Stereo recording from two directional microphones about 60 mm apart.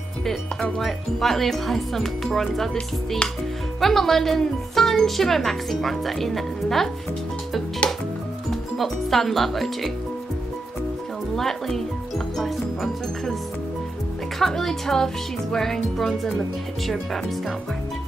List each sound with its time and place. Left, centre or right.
0.2 s speech: centre
8.5 s speech: centre
11.3 s speech: centre
14.4 s speech: centre